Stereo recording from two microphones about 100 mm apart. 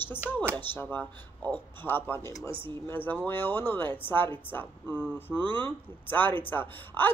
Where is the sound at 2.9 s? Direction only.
20° left (ahead or behind).